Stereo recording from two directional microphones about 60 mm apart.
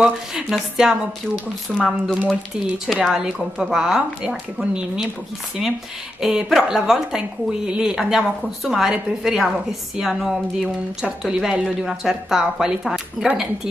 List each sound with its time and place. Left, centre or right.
0.0 s speech: centre
1.8 s speech: centre
2.9 s a woman's voice: centre
6.2 s a woman's voice: centre